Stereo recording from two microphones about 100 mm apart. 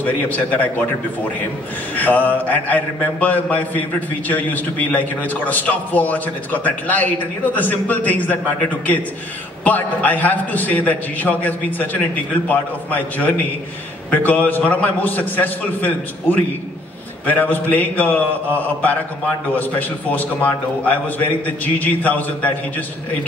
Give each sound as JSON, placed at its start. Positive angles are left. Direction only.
{"t": 0.0, "sound": "a man's voice", "side_deg": 15}
{"t": 2.0, "sound": "a man's voice", "side_deg": 15}
{"t": 20.1, "sound": "a man's voice", "side_deg": 15}